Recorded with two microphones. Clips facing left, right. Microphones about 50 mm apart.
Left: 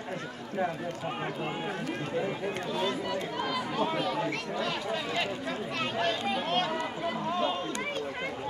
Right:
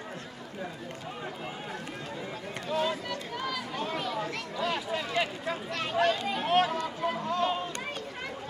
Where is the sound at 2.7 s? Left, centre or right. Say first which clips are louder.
Right 4 dB; centre.